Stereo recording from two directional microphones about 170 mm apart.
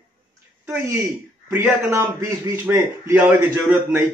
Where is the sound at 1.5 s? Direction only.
15° right (ahead or behind).